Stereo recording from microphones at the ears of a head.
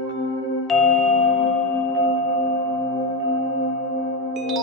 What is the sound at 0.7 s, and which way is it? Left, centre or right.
Music, left.